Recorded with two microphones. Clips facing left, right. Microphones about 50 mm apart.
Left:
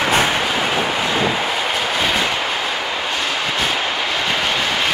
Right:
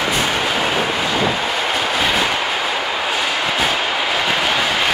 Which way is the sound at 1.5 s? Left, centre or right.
Centre.